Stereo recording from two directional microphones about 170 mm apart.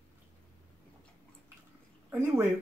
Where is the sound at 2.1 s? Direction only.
15° right (ahead or behind).